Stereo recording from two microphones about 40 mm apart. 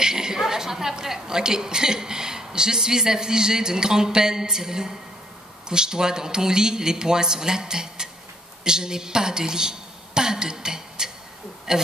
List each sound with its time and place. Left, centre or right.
0.0 s a woman's voice: centre